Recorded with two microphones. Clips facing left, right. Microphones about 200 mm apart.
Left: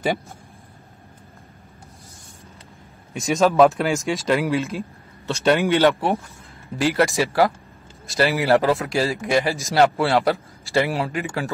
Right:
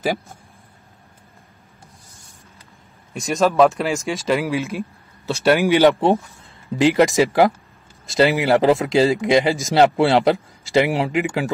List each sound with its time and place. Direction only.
3.1 s speech: centre (ahead or behind)
5.8 s speech: 20° right (ahead or behind)